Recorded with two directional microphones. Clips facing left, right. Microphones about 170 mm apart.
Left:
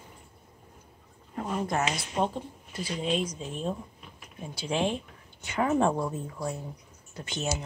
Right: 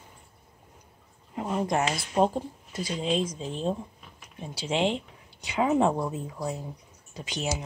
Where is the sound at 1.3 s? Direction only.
15° right (ahead or behind).